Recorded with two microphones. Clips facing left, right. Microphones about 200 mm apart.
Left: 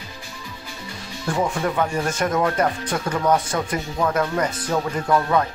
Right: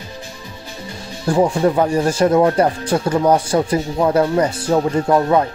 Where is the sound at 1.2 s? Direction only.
30° right (ahead or behind).